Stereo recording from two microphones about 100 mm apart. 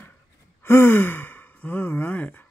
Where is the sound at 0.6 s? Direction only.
25° left (ahead or behind).